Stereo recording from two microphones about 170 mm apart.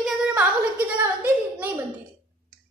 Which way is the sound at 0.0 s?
5° right (ahead or behind).